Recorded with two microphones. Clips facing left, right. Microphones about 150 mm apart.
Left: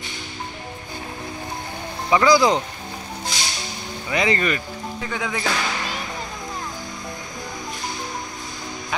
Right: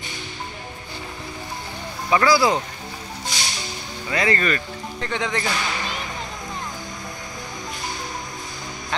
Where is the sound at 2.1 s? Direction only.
15° left (ahead or behind).